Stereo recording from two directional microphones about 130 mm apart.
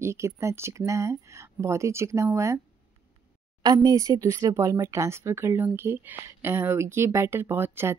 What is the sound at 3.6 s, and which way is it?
Speech, 25° right (ahead or behind).